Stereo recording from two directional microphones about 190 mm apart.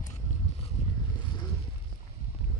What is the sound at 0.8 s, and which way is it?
Vehicle, 35° left (ahead or behind).